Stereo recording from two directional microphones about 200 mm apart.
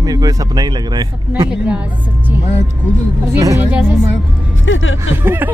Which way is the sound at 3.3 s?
15° right (ahead or behind).